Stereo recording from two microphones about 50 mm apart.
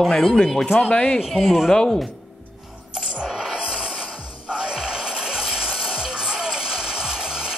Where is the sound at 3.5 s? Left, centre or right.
Centre.